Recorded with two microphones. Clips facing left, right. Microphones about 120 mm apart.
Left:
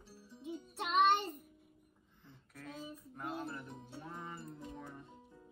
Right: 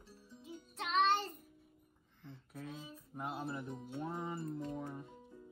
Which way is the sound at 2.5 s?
15° right (ahead or behind).